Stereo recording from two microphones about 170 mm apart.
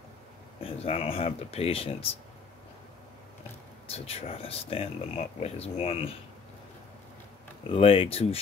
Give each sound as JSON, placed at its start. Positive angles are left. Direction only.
{"t": 0.6, "sound": "speech", "side_deg": 35}
{"t": 3.9, "sound": "speech", "side_deg": 35}
{"t": 7.7, "sound": "speech", "side_deg": 35}